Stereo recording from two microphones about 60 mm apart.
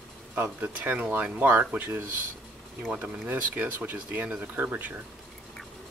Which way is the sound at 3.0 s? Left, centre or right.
Right.